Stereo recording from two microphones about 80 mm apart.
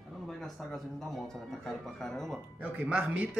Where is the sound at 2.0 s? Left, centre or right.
Centre.